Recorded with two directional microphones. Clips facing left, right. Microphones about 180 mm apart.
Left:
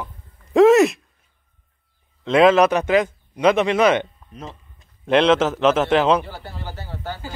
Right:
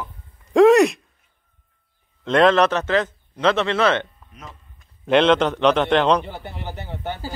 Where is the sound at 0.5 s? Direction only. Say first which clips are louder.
Even; centre (ahead or behind).